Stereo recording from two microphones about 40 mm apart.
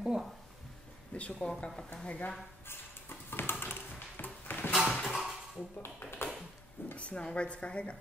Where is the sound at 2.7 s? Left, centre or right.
Left.